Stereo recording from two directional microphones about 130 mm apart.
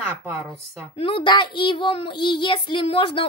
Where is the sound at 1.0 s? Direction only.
45° left (ahead or behind).